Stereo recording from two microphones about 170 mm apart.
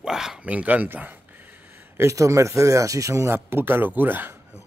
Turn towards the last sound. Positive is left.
turn(degrees=-10)  # may be behind; listen again after turning